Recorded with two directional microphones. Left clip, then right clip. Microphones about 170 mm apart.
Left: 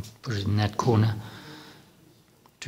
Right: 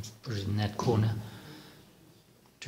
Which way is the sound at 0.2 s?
30° left (ahead or behind).